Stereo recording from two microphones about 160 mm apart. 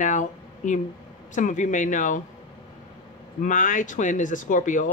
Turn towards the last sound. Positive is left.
turn(degrees=55)  # may be behind; listen again after turning